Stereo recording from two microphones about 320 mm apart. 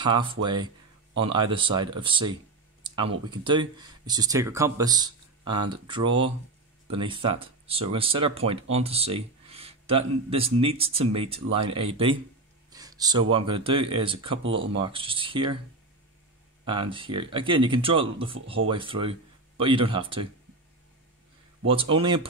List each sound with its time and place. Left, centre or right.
0.0 s speech: centre
16.6 s speech: centre
21.6 s speech: centre